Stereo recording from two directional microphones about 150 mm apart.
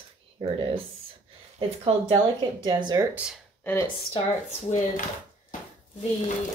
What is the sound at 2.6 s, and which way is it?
Speech, 30° right (ahead or behind).